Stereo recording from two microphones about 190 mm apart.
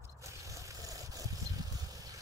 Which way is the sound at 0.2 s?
15° right (ahead or behind).